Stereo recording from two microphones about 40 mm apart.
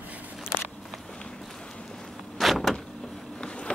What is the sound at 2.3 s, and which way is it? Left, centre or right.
Vehicle, centre.